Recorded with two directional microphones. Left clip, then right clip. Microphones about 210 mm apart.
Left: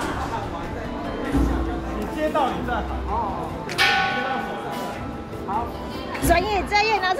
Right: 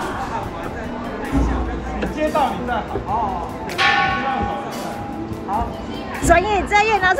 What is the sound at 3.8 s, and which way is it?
Whip, 45° left (ahead or behind).